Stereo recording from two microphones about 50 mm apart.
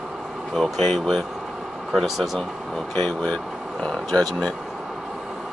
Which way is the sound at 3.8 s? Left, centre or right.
Centre.